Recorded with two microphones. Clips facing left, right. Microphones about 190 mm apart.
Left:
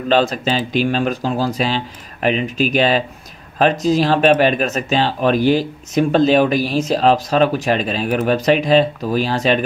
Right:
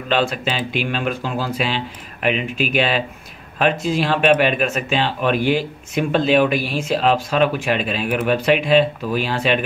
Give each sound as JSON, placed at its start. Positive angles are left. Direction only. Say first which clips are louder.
{"t": 0.1, "sound": "speech", "louder": "left 4 dB", "side_deg": 40}